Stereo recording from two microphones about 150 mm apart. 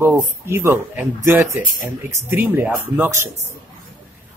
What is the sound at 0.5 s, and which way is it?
A man's voice, 15° right (ahead or behind).